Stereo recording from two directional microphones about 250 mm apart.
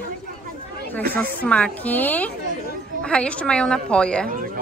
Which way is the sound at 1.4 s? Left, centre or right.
Centre.